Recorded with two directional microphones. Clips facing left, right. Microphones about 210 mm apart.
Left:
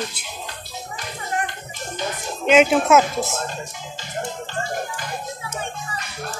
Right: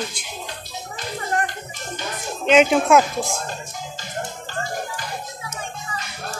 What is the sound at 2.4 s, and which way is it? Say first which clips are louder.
Speech: even; 5° left (ahead or behind).